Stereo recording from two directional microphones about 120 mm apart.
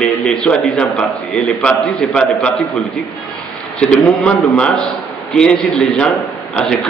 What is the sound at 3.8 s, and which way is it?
A man's voice, 10° left (ahead or behind).